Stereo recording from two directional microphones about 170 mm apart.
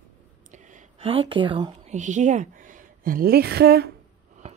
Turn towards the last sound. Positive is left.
turn(degrees=-70)  # may be behind; listen again after turning